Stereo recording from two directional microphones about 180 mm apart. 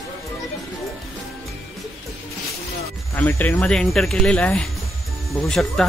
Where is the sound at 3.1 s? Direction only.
10° left (ahead or behind).